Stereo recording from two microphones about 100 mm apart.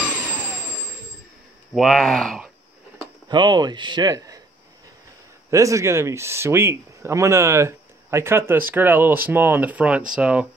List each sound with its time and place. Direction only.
1.7 s speech: centre (ahead or behind)
3.3 s speech: 50° right (ahead or behind)
5.5 s speech: 30° right (ahead or behind); by 10.4 s 10° right (ahead or behind)